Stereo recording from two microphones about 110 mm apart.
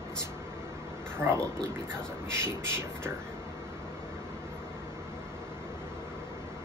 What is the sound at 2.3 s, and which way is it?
Speech, 25° right (ahead or behind).